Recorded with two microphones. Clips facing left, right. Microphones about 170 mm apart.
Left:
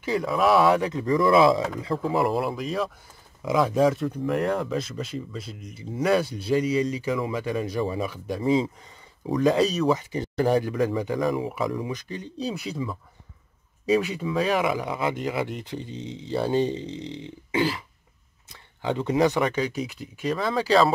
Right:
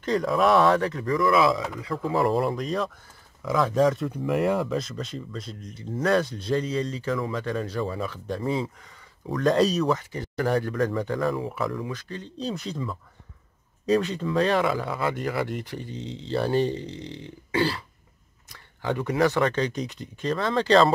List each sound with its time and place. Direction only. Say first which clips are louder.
0.0 s speech: right 1 dB; 5° left (ahead or behind); by 2.0 s 25° left (ahead or behind)
2.1 s speech: right 3 dB; 5° left (ahead or behind)
9.4 s speech: even; 5° left (ahead or behind)
9.9 s speech: left 4 dB; 20° left (ahead or behind)